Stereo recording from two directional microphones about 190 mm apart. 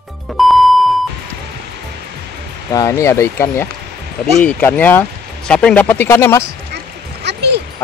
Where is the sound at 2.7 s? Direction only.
20° left (ahead or behind).